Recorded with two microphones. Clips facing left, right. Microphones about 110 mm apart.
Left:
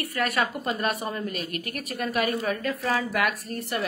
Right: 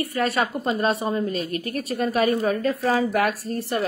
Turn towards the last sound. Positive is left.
turn(degrees=-30)  # may be behind; listen again after turning